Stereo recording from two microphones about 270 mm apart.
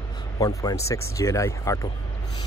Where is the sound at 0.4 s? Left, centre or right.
Centre.